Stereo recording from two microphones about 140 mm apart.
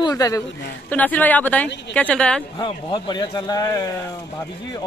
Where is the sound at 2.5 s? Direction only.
30° left (ahead or behind).